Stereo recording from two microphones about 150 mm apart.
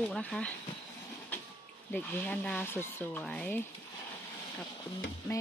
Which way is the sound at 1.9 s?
10° left (ahead or behind).